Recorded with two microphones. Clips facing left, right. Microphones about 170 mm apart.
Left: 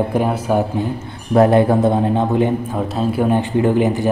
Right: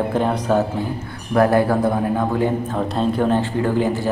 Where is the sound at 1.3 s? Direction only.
25° left (ahead or behind).